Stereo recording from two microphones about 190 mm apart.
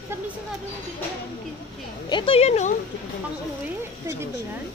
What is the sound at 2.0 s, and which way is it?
Speech, 25° left (ahead or behind).